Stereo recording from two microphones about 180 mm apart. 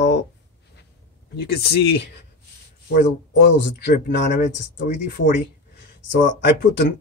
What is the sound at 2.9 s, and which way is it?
Speech, 75° left (ahead or behind).